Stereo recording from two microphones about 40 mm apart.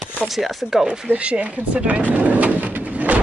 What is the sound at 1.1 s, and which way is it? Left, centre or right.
Speech, right.